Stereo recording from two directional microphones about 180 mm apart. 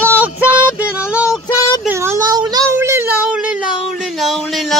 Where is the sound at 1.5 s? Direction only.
20° left (ahead or behind).